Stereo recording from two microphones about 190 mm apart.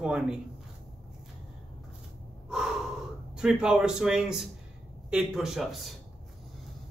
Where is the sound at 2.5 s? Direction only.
Centre (ahead or behind).